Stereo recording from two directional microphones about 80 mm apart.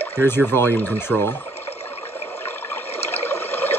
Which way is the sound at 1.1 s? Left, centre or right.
Centre.